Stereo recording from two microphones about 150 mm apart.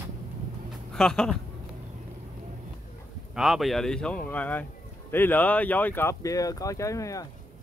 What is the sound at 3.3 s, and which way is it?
Speech, centre (ahead or behind).